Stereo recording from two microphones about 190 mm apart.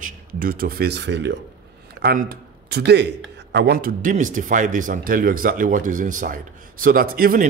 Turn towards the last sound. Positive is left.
turn(degrees=-50)  # may be behind; listen again after turning